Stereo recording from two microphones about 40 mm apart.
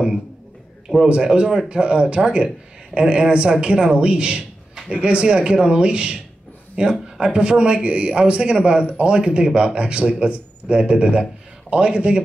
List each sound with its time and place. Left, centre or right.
1.0 s speech: right